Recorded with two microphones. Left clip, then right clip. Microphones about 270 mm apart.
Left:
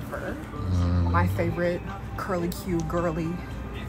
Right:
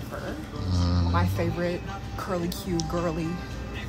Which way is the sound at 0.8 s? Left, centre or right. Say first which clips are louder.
Left 2 dB; centre.